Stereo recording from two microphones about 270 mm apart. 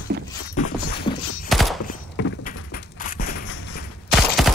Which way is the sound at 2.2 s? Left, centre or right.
Left.